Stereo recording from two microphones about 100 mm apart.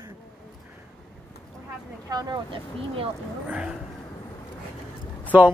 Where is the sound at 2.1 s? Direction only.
45° right (ahead or behind).